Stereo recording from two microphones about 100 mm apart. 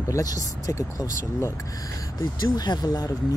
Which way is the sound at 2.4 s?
45° left (ahead or behind).